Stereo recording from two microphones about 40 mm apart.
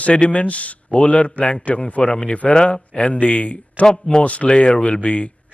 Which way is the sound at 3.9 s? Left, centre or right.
Centre.